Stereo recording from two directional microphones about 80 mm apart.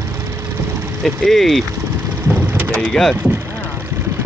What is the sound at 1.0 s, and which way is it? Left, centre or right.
Speech, centre.